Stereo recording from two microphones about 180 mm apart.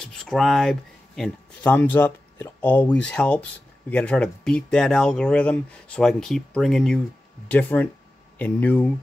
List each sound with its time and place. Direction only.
0.0 s speech: 5° left (ahead or behind)